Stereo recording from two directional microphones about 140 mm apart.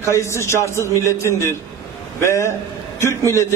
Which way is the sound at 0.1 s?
20° left (ahead or behind).